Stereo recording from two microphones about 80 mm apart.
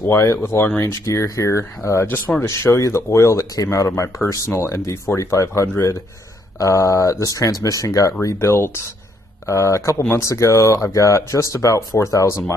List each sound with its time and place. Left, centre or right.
0.1 s speech: left
2.0 s speech: left
2.4 s speech: left